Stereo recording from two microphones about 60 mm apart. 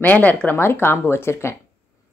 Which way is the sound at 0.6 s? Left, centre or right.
Left.